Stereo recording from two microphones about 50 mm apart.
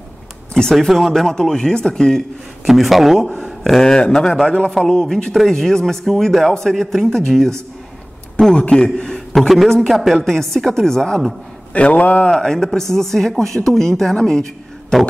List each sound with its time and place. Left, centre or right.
0.7 s a woman's voice: centre
2.6 s a man's voice: centre
3.8 s a woman's voice: centre
9.7 s a woman's voice: centre
11.7 s speech: left
12.3 s a woman's voice: centre